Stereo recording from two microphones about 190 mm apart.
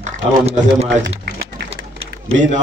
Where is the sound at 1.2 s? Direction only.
60° right (ahead or behind).